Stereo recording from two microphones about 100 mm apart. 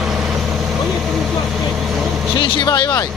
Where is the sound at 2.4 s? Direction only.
50° left (ahead or behind).